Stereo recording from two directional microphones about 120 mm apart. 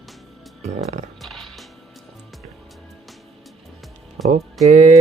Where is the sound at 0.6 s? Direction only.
70° right (ahead or behind).